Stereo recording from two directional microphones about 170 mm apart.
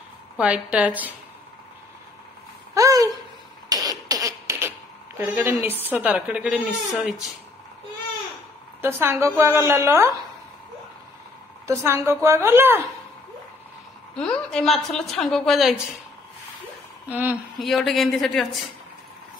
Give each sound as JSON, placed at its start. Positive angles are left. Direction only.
{"t": 0.4, "sound": "a woman's voice", "side_deg": -5}
{"t": 2.7, "sound": "a sound", "side_deg": -20}
{"t": 3.6, "sound": "cough", "side_deg": -20}
{"t": 5.9, "sound": "a woman's voice", "side_deg": -5}
{"t": 8.8, "sound": "a woman's voice", "side_deg": -15}
{"t": 11.6, "sound": "a woman's voice", "side_deg": -15}
{"t": 14.1, "sound": "a woman's voice", "side_deg": 5}
{"t": 17.1, "sound": "a woman's voice", "side_deg": -10}